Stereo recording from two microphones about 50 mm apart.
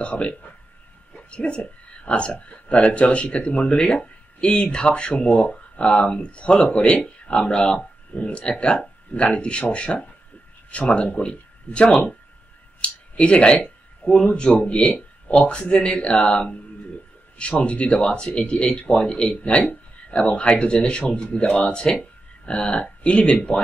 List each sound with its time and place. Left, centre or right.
0.0 s speech: left
13.1 s speech: left